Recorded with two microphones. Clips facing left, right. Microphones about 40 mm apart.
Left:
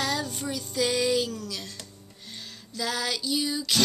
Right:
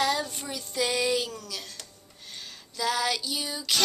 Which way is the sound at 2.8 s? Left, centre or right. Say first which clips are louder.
Right 2 dB; centre.